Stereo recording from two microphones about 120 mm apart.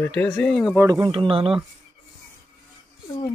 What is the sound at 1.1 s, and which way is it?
Speech, 50° right (ahead or behind).